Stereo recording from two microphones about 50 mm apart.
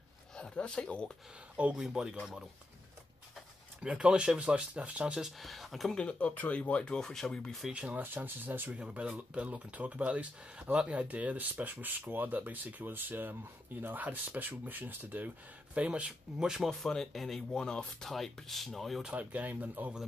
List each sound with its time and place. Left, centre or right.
0.4 s a sound: left
0.7 s speech: centre
1.8 s speech: centre
3.8 s speech: right
5.2 s speech: centre
5.9 s speech: left; by 7.7 s centre
7.7 s speech: right
8.7 s speech: right
15.7 s speech: right
16.5 s speech: centre
17.6 s speech: centre
18.1 s speech: centre
19.1 s speech: right